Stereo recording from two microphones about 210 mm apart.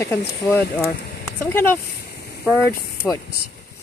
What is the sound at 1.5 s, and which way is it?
A woman's voice, 10° left (ahead or behind).